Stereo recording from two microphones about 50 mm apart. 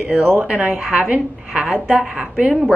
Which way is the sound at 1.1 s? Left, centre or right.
Right.